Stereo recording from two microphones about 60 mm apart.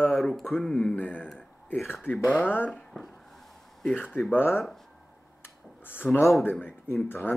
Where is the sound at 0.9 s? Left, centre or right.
Left.